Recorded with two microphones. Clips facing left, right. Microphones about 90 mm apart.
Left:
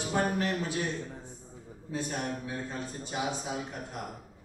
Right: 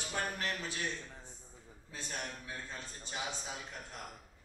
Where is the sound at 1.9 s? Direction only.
15° left (ahead or behind).